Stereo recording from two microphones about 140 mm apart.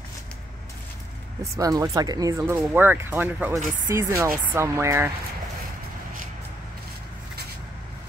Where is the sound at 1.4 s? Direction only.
25° right (ahead or behind).